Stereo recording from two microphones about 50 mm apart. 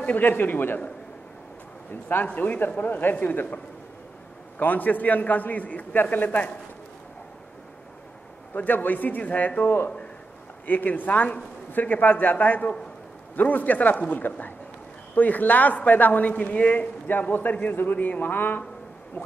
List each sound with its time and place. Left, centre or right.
0.0 s speech: left
2.2 s speech: left
8.5 s speech: left